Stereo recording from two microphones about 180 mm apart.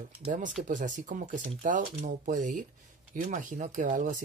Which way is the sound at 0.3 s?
45° right (ahead or behind).